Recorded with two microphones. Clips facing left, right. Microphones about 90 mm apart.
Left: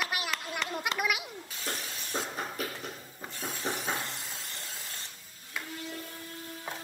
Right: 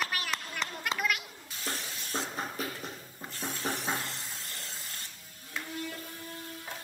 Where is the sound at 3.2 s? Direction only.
15° left (ahead or behind).